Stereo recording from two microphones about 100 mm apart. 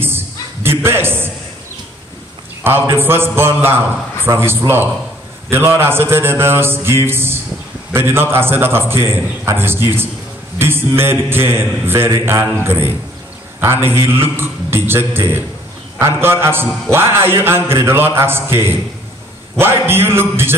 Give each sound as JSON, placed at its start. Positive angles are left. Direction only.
{"t": 0.7, "sound": "a man's voice", "side_deg": -25}
{"t": 2.6, "sound": "a man's voice", "side_deg": -25}